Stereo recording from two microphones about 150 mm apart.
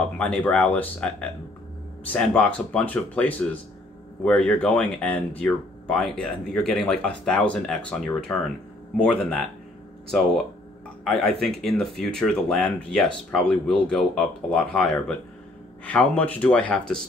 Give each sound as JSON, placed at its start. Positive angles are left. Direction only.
{"t": 0.0, "sound": "speech", "side_deg": 5}